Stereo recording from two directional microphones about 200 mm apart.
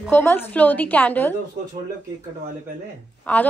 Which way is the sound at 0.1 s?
10° left (ahead or behind).